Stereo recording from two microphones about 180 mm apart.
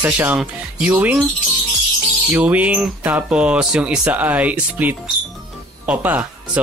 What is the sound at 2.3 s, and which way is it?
Speech, 10° right (ahead or behind).